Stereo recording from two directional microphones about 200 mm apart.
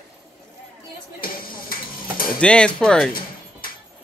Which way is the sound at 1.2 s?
45° left (ahead or behind).